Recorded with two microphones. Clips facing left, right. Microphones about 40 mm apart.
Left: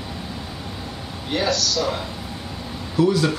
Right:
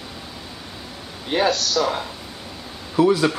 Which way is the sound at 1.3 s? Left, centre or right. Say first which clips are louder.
Right 2 dB; right.